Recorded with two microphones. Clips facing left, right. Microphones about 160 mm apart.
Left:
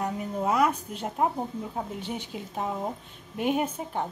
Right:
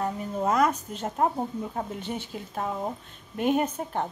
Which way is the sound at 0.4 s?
10° left (ahead or behind).